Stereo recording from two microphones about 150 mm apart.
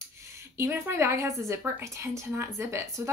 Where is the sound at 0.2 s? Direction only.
20° right (ahead or behind).